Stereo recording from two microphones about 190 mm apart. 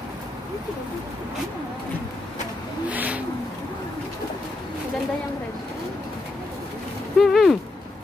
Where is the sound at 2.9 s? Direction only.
10° right (ahead or behind).